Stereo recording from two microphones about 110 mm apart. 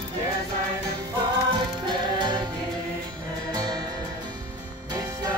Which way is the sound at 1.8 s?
45° right (ahead or behind).